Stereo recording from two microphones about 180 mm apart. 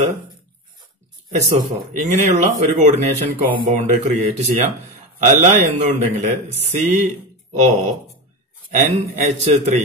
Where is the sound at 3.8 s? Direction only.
40° right (ahead or behind).